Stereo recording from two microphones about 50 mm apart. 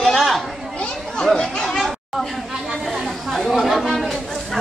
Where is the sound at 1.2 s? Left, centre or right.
Centre.